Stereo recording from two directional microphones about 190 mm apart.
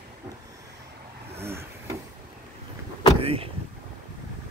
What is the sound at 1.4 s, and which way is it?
Wood, 15° right (ahead or behind).